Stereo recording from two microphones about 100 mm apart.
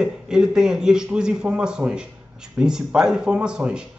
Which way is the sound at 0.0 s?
5° right (ahead or behind).